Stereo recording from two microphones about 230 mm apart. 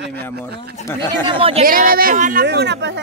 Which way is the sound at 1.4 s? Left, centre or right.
Right.